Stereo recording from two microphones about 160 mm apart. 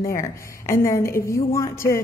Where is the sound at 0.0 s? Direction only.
15° left (ahead or behind).